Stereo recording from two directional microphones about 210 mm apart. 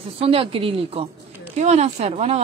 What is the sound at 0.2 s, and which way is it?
A woman's voice, 25° right (ahead or behind).